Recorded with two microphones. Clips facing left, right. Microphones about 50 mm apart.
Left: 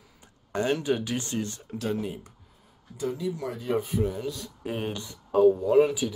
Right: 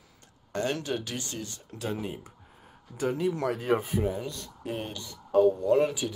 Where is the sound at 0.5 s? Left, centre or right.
Centre.